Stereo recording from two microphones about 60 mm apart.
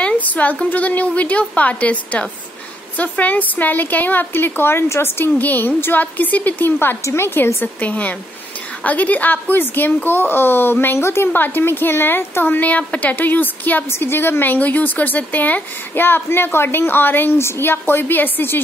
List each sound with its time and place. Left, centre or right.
0.0 s a woman's voice: left
6.8 s a woman's voice: left
7.6 s a woman's voice: left
13.8 s a woman's voice: left